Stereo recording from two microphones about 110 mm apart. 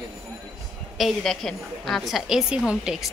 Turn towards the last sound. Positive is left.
turn(degrees=-5)  # may be behind; listen again after turning